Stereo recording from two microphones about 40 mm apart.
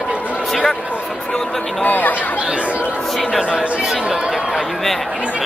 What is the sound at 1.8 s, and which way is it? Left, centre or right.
Speech, left.